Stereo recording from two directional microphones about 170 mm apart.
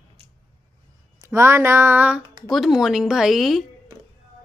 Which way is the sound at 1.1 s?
15° right (ahead or behind).